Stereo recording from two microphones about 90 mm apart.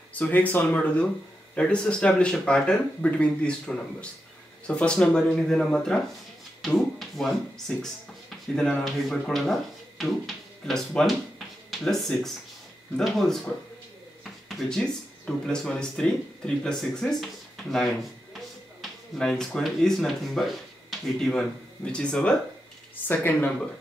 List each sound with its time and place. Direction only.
0.1 s speech: 20° left (ahead or behind)
14.5 s speech: 5° left (ahead or behind)
18.3 s a sound: 5° left (ahead or behind)
21.3 s speech: 10° left (ahead or behind)